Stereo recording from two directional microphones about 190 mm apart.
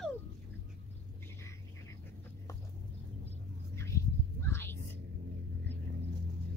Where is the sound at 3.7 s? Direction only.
15° left (ahead or behind).